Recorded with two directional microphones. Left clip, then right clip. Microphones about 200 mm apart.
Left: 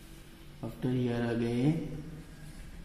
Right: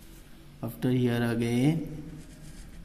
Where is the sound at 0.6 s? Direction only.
40° right (ahead or behind).